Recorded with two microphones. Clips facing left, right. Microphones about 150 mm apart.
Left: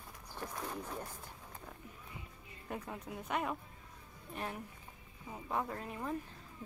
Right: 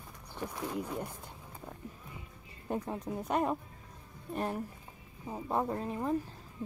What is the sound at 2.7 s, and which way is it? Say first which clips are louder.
A woman's voice: right 8 dB; 35° right (ahead or behind).